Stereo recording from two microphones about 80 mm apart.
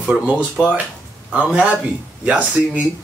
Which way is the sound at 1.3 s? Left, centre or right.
Centre.